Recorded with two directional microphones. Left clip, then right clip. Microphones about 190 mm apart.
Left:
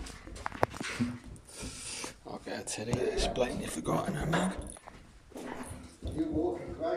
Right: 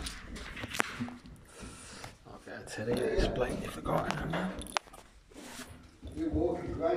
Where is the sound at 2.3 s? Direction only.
20° left (ahead or behind).